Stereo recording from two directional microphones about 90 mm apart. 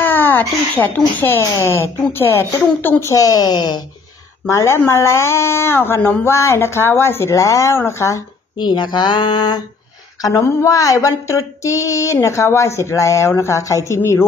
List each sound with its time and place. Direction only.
0.0 s a sound: 20° left (ahead or behind)
1.4 s speech: 35° left (ahead or behind)
3.1 s a woman's voice: 40° left (ahead or behind)
4.5 s speech: 30° left (ahead or behind)
8.5 s speech: 55° left (ahead or behind)
10.2 s speech: 35° left (ahead or behind)